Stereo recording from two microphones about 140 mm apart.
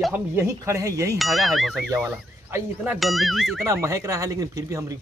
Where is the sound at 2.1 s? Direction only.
15° right (ahead or behind).